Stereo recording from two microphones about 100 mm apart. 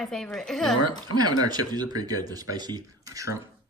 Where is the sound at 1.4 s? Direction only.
40° right (ahead or behind).